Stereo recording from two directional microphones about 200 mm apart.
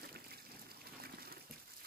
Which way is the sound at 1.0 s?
50° right (ahead or behind).